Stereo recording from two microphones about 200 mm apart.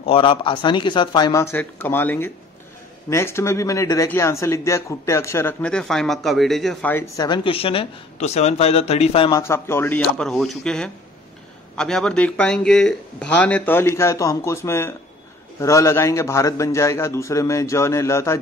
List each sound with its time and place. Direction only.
0.0 s speech: 25° left (ahead or behind)
9.4 s speech: 15° left (ahead or behind)